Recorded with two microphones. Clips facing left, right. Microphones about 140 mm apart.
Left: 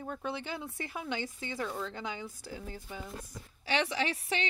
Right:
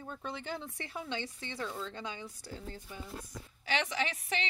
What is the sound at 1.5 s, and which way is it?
Speech, 50° left (ahead or behind).